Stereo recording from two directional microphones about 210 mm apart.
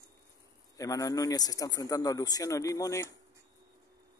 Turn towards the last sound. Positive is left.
turn(degrees=15)  # may be behind; listen again after turning